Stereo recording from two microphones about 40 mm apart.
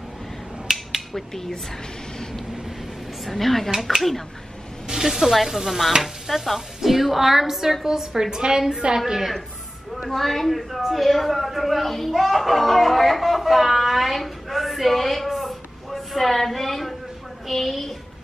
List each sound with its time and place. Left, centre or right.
0.7 s a sound: centre
1.1 s speech: centre
3.3 s a woman's voice: centre
4.8 s a woman's voice: centre
10.0 s a woman's voice: centre